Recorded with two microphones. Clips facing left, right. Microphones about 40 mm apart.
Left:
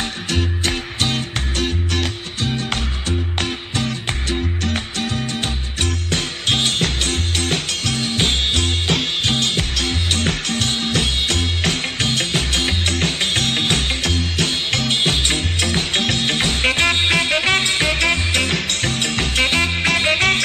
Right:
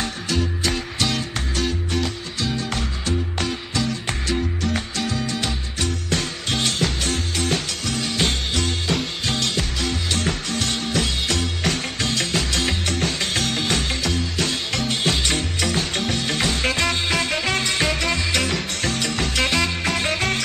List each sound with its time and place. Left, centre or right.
0.0 s music: left
1.9 s music: left